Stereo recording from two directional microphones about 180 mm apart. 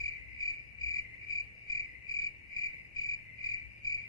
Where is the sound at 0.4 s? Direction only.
20° left (ahead or behind).